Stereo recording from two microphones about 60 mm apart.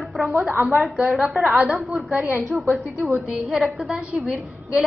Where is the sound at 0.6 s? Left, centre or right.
Centre.